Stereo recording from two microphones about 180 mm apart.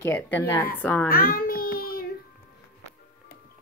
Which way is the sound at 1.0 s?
55° left (ahead or behind).